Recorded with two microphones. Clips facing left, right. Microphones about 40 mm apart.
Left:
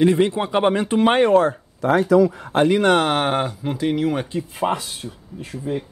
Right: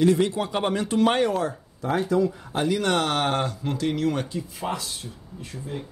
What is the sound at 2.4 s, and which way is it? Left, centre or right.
Speech, left.